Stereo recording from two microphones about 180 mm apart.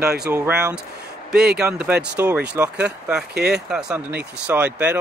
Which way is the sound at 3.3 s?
65° right (ahead or behind).